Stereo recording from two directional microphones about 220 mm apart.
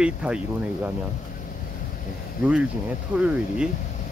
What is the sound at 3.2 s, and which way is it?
Speech, 5° right (ahead or behind).